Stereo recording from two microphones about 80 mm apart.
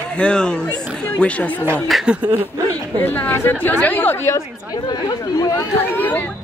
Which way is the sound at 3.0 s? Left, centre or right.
Left.